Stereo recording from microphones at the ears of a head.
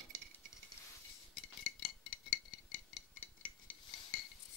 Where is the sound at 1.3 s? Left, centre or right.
Left.